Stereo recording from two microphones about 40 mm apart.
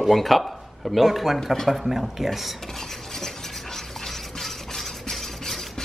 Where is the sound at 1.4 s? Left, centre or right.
Centre.